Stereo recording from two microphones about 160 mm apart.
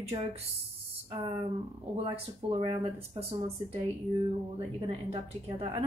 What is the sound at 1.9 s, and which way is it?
Speech, 35° right (ahead or behind).